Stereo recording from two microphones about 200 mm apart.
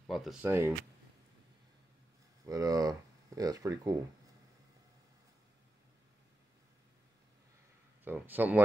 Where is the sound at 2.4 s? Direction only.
15° right (ahead or behind).